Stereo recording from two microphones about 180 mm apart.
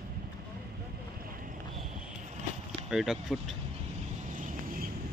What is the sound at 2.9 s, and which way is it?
Speech, centre (ahead or behind).